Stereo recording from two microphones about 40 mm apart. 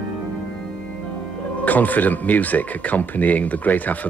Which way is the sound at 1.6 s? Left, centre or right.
Left.